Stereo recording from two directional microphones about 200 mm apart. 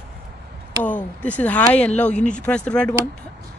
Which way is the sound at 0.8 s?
5° left (ahead or behind).